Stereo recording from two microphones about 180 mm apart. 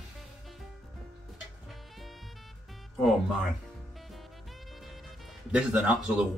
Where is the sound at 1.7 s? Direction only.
Centre (ahead or behind).